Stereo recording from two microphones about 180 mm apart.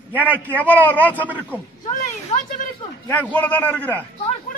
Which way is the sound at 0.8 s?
10° left (ahead or behind).